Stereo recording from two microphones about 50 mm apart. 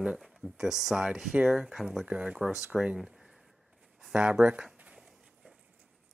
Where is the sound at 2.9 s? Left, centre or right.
Centre.